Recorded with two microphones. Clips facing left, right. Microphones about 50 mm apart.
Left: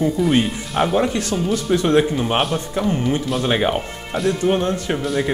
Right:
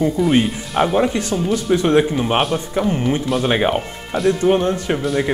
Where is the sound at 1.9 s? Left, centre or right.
Centre.